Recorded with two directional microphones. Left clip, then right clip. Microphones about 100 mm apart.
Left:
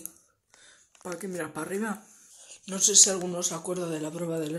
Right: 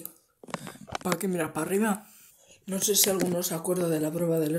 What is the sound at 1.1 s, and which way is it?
Speech, 40° right (ahead or behind).